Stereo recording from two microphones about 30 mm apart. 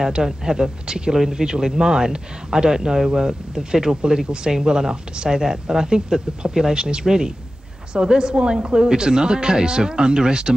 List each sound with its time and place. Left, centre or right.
0.0 s speech: right
1.1 s speech: centre